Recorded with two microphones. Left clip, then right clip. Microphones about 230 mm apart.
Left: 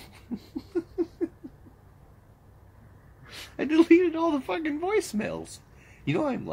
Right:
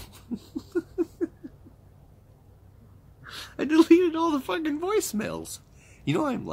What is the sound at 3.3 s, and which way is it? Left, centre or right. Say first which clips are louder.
Speech: right 2 dB; centre.